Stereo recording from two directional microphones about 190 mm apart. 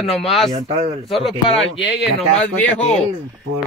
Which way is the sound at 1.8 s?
Centre (ahead or behind).